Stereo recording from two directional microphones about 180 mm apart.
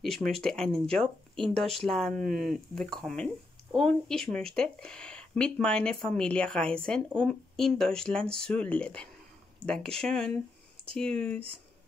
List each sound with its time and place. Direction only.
0.0 s speech: centre (ahead or behind)